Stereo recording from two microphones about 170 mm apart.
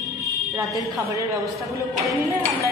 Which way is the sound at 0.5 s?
20° right (ahead or behind).